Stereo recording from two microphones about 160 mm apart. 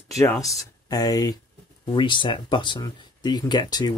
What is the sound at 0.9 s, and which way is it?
Speech, 25° left (ahead or behind).